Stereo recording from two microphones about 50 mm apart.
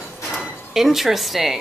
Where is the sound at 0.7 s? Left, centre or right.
Centre.